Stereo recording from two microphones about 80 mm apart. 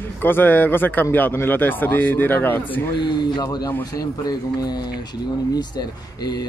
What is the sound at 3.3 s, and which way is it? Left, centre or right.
Speech, left.